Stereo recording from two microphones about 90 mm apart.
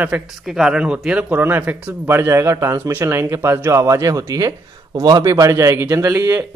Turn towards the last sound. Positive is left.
turn(degrees=-30)  # may be behind; listen again after turning